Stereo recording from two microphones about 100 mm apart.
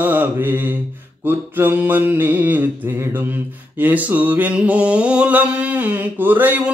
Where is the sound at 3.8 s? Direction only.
15° right (ahead or behind).